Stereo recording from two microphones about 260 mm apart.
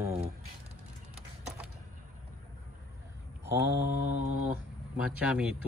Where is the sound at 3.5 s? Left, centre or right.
Left.